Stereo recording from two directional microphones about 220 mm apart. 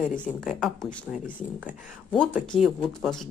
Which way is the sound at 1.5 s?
5° right (ahead or behind).